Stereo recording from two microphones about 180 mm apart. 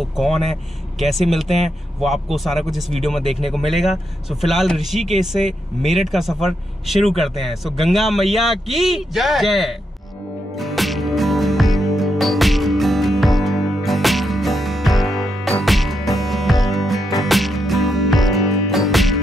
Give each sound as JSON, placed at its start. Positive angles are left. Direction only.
{"t": 0.2, "sound": "speech", "side_deg": 0}
{"t": 10.6, "sound": "music", "side_deg": 0}